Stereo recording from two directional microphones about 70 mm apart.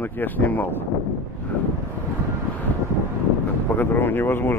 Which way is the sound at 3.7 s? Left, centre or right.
Left.